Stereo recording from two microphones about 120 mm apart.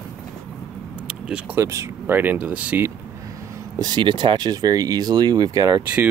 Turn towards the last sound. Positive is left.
turn(degrees=-35)  # may be behind; listen again after turning